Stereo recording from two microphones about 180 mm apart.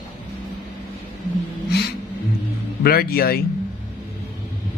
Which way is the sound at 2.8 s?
60° left (ahead or behind).